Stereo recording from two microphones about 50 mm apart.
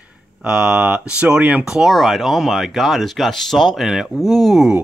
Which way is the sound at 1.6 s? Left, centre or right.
Centre.